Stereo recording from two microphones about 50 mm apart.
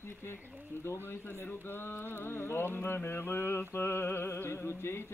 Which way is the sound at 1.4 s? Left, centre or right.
Left.